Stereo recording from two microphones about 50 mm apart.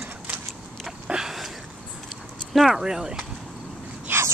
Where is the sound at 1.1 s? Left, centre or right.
Centre.